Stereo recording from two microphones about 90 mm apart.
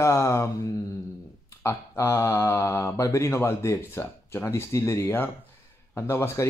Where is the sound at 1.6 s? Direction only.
30° left (ahead or behind).